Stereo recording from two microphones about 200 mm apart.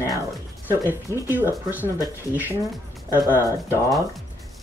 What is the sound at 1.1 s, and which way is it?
Speech, 15° right (ahead or behind).